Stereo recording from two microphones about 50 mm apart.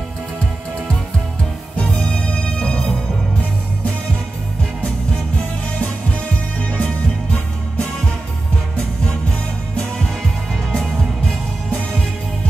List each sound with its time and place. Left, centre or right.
1.9 s music: centre
5.8 s music: left
10.7 s music: centre